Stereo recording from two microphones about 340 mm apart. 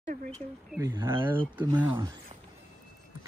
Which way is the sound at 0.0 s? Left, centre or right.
Right.